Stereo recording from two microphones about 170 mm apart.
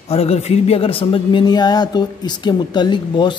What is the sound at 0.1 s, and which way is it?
Speech, 35° left (ahead or behind).